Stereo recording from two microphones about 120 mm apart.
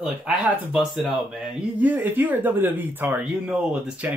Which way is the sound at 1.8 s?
15° right (ahead or behind).